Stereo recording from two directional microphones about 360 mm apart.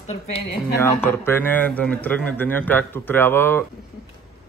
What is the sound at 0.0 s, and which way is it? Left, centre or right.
Speech, centre.